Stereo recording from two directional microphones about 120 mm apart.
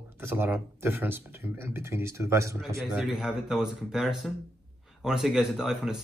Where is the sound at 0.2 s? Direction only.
15° right (ahead or behind).